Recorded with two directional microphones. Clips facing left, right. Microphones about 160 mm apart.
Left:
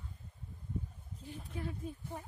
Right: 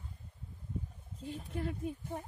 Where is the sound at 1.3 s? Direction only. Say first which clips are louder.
Right 4 dB; 65° right (ahead or behind).